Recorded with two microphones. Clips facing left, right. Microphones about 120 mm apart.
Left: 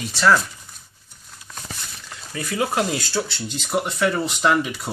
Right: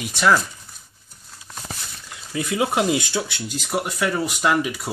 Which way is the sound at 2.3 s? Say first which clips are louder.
Right 2 dB; 20° right (ahead or behind).